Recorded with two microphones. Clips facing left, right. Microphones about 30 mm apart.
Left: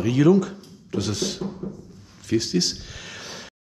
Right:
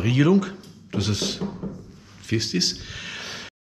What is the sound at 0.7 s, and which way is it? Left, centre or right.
Beatboxing, centre.